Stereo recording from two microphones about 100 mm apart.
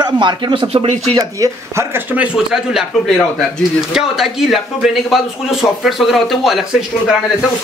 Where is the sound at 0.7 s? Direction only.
90° right.